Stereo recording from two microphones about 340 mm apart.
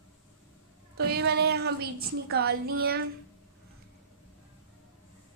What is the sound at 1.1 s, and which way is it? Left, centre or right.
Speech, right.